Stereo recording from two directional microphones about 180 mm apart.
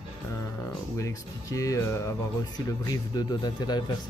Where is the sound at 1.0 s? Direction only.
15° left (ahead or behind).